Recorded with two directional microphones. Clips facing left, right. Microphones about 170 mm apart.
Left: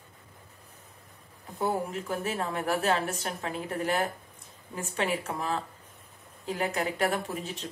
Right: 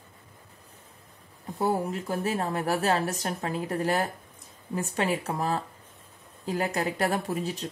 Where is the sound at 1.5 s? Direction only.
40° right (ahead or behind).